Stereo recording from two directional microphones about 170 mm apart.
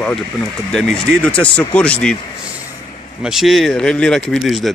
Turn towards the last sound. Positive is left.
turn(degrees=0)  # may be behind; listen again after turning